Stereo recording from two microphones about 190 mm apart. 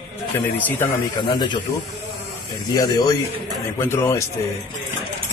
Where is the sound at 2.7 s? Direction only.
20° left (ahead or behind).